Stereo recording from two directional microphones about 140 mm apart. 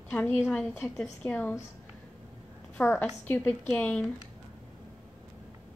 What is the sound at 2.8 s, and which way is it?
A woman's voice, 10° left (ahead or behind).